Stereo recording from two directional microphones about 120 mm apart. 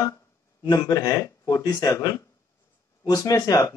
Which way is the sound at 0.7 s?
30° left (ahead or behind).